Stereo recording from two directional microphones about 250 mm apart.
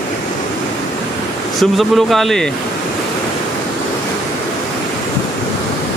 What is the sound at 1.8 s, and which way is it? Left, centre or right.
Speech, centre.